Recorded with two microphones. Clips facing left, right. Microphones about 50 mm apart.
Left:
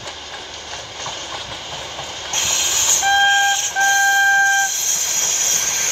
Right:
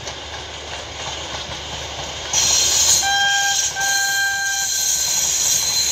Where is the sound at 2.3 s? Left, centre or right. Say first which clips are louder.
Even; left.